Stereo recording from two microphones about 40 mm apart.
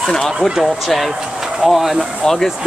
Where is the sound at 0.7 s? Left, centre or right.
Centre.